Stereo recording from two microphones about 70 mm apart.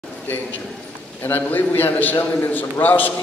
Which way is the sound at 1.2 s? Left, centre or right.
Left.